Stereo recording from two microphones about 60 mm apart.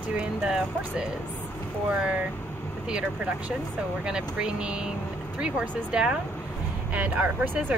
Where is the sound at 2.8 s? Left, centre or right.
Centre.